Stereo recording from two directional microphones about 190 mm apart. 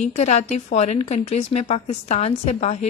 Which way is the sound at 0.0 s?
35° left (ahead or behind).